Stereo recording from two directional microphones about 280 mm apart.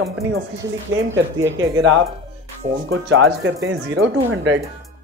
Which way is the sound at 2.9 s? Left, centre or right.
Right.